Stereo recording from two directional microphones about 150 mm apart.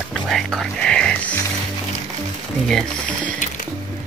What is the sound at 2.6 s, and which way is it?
Speech, 5° left (ahead or behind).